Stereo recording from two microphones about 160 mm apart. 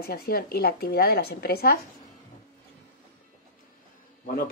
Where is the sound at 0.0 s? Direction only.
70° left (ahead or behind).